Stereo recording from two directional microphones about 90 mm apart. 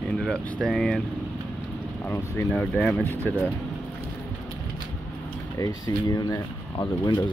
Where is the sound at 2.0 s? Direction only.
30° left (ahead or behind).